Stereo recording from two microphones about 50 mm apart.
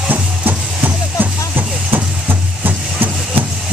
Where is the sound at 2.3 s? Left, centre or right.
Right.